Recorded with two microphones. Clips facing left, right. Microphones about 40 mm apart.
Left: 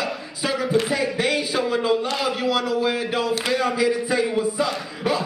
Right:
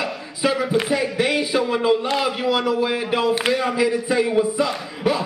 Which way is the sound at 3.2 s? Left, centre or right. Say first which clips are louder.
Right 4 dB; right.